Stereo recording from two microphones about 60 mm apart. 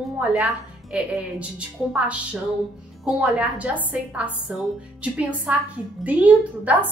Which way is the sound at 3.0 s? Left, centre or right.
Centre.